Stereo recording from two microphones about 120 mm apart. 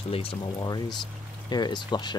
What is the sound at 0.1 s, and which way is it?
Speech, 50° left (ahead or behind).